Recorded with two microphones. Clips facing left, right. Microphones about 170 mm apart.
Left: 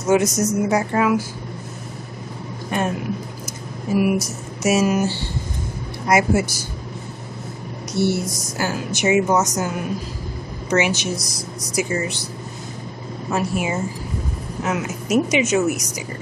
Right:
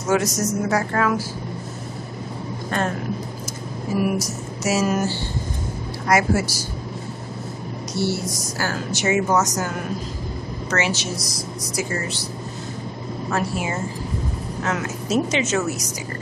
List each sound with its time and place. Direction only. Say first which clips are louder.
0.1 s speech: left 3 dB; 20° left (ahead or behind)
2.7 s speech: left 1 dB; 15° left (ahead or behind)
4.6 s speech: left 3 dB; 15° left (ahead or behind)
8.0 s a woman's voice: left 4 dB; 55° left (ahead or behind)
8.5 s speech: left 3 dB; 15° left (ahead or behind)
10.7 s speech: left 4 dB; 15° left (ahead or behind)
13.3 s speech: left 3 dB; 15° left (ahead or behind)